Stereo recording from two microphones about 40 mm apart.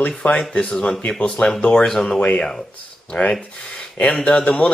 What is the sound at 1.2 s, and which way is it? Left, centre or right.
Speech, left.